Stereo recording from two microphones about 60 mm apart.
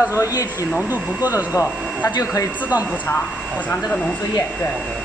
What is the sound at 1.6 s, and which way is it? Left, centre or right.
Speech, left.